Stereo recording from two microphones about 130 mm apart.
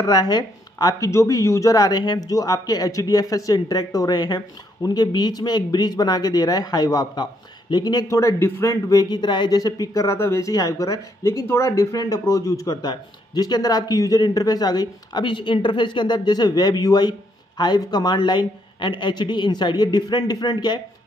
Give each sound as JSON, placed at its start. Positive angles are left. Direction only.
{"t": 0.0, "sound": "a man's voice", "side_deg": 30}